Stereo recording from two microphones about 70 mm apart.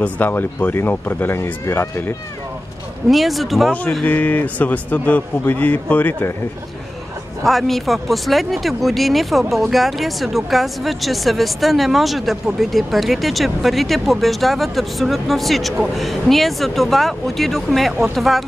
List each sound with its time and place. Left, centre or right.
0.0 s speech: left
3.1 s speech: centre
4.0 s speech: left
7.4 s speech: centre